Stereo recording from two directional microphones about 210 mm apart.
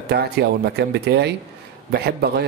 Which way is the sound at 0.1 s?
50° right (ahead or behind).